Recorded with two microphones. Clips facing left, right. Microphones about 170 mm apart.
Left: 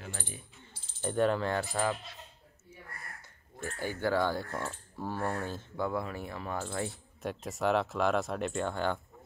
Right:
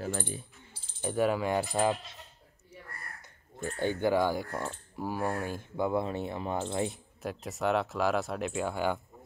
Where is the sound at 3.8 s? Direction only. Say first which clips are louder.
Right 3 dB; 20° right (ahead or behind).